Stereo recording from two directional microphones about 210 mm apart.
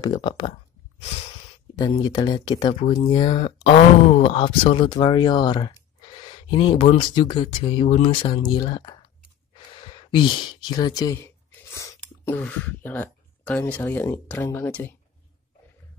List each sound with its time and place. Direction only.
0.0 s speech: 20° left (ahead or behind)
2.0 s speech: 20° left (ahead or behind)
10.1 s speech: 20° left (ahead or behind)